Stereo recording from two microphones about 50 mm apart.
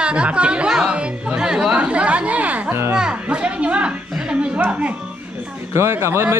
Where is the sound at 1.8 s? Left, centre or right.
Right.